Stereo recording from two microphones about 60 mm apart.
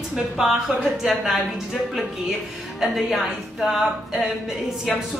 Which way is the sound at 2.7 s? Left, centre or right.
Centre.